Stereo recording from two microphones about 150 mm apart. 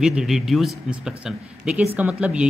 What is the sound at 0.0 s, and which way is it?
A man's voice, 5° right (ahead or behind).